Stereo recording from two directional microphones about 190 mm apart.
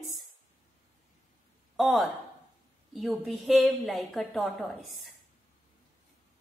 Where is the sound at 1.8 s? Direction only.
Centre (ahead or behind).